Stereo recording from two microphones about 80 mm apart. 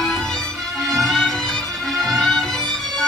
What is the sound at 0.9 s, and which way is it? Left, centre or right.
Music, centre.